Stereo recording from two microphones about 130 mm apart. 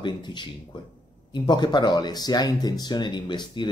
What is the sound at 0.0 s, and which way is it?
Speech, 35° left (ahead or behind).